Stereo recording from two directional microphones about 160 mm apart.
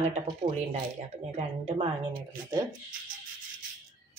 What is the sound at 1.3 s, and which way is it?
Speech, 40° right (ahead or behind).